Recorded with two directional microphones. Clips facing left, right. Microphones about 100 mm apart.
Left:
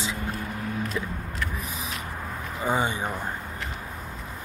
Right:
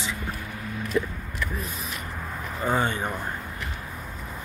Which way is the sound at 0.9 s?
Centre (ahead or behind).